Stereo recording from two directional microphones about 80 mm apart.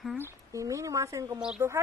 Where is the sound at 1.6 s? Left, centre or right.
Right.